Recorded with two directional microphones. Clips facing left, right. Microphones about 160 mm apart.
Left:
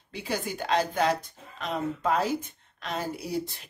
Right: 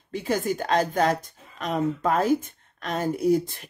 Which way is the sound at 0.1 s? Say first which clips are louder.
Right 7 dB; 45° right (ahead or behind).